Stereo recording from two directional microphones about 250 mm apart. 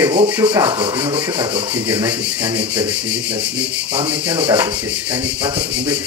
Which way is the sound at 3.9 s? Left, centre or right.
Centre.